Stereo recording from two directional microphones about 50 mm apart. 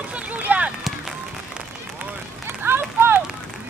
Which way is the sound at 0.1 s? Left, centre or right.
Right.